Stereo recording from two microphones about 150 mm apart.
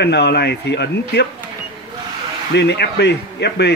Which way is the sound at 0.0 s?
90° left.